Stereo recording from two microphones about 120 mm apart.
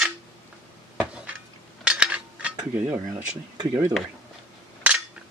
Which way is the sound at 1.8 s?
10° right (ahead or behind).